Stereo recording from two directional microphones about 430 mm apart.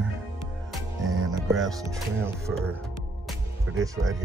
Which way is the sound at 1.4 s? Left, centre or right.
Centre.